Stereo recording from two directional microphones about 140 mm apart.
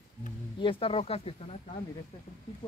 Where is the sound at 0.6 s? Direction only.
40° left (ahead or behind).